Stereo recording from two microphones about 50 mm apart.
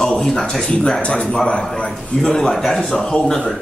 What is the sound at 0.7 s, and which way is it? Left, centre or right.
A man's voice, centre.